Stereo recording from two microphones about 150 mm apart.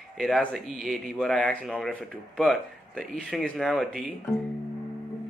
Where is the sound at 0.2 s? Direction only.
5° left (ahead or behind).